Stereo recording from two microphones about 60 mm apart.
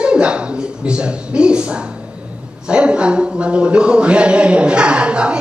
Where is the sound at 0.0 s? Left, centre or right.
Centre.